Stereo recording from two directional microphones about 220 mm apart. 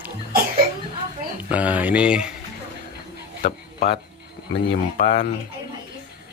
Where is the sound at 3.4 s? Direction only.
45° left (ahead or behind).